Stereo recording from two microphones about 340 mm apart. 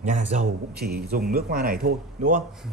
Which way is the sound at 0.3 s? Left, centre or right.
Right.